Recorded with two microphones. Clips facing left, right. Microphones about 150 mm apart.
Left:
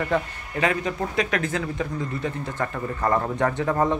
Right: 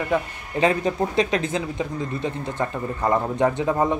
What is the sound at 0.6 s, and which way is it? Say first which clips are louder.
Speech: right 4 dB; 30° right (ahead or behind).